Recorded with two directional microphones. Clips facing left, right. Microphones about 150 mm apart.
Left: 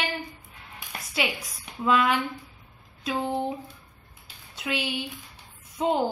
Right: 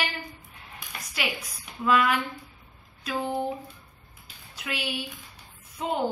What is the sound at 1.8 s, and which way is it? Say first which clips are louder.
Speech: even; 25° left (ahead or behind).